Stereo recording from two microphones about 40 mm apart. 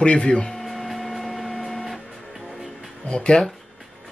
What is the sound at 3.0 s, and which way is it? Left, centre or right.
Speech, left.